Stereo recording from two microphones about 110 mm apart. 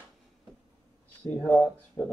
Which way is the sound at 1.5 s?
15° left (ahead or behind).